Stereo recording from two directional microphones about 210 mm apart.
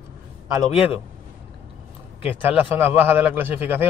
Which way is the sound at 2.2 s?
10° right (ahead or behind).